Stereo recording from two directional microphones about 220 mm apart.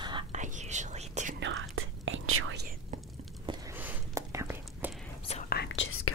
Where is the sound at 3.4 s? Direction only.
10° right (ahead or behind).